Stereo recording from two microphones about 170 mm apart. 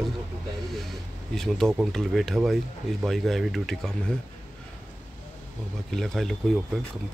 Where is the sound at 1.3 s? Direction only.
5° left (ahead or behind).